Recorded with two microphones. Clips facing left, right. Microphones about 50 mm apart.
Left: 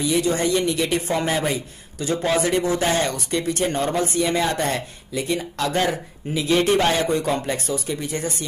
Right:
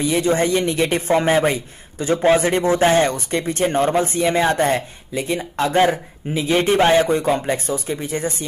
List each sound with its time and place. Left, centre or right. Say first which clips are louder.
0.0 s speech: right 3 dB; right